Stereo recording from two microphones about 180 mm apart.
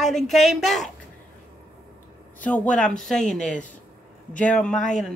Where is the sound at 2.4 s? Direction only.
5° left (ahead or behind).